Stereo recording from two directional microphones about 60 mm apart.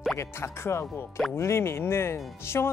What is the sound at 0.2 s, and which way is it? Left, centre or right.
Speech, left.